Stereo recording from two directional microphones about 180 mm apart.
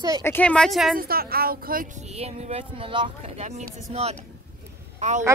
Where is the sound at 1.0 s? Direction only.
55° right (ahead or behind); by 4.2 s 35° right (ahead or behind).